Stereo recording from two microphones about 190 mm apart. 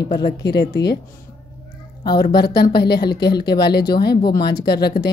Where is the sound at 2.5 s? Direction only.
55° left (ahead or behind).